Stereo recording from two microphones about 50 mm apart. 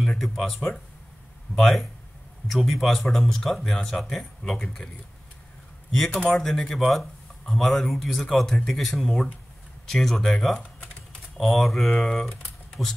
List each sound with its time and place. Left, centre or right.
0.2 s speech: centre
5.9 s a man's voice: centre
11.3 s speech: centre
12.8 s speech: centre